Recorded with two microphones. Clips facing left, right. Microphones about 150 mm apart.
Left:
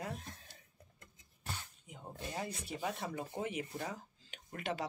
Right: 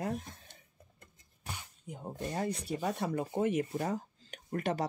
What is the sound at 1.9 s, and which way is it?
Speech, 45° right (ahead or behind).